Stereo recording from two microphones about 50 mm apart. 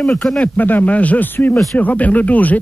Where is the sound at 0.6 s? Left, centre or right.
Left.